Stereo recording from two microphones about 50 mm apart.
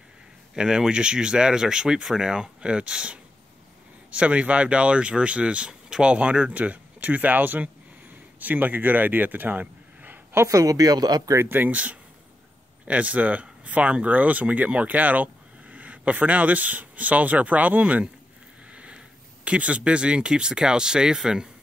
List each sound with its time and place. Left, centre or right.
0.6 s speech: centre; by 10.2 s right
10.3 s speech: right
11.3 s speech: right
11.7 s speech: right